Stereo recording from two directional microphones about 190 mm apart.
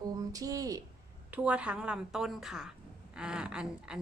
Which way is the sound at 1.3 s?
5° right (ahead or behind).